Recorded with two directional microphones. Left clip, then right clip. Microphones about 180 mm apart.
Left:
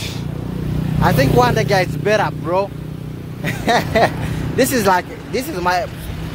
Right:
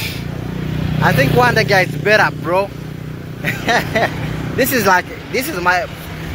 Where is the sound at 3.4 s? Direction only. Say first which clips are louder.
Right 1 dB; 15° left (ahead or behind).